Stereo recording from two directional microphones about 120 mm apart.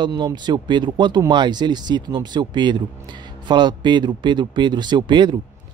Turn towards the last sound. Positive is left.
turn(degrees=-40)  # may be behind; listen again after turning